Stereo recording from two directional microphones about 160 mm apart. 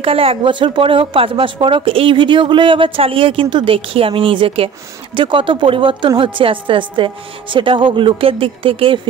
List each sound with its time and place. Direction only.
0.0 s speech: 35° right (ahead or behind)